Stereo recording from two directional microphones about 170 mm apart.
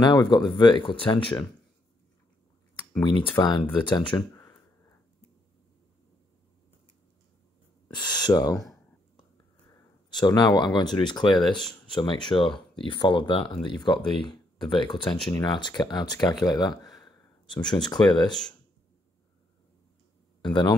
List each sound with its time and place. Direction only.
0.0 s speech: 25° left (ahead or behind)
3.0 s speech: 30° left (ahead or behind)
4.3 s a sound: 15° left (ahead or behind)
7.9 s speech: 25° left (ahead or behind)
10.2 s speech: 25° left (ahead or behind)
20.4 s speech: 25° left (ahead or behind)